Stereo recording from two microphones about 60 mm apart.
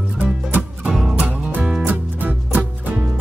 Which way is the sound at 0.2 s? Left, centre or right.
Right.